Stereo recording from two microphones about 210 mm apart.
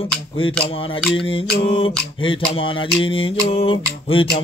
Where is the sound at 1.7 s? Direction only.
25° left (ahead or behind).